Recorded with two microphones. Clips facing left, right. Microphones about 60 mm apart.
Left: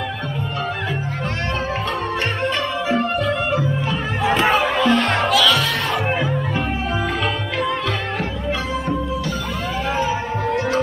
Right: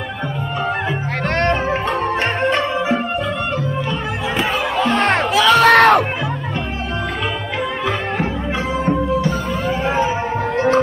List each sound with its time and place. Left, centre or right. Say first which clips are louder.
2.4 s music: right 4 dB; right
4.8 s music: right 1 dB; right
5.6 s crowd: right 12 dB; right
9.8 s music: right 2 dB; right